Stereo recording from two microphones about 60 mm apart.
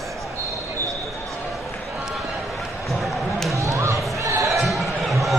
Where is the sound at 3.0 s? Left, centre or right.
Centre.